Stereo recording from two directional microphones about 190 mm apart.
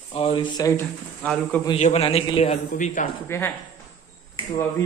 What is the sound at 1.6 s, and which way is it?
A man's voice, 35° left (ahead or behind).